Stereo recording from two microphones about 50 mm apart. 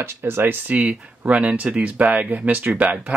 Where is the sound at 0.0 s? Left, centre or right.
Right.